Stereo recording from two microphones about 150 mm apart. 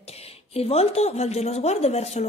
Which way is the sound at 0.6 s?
45° left (ahead or behind).